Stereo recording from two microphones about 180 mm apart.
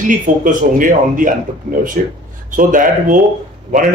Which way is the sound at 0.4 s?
50° right (ahead or behind).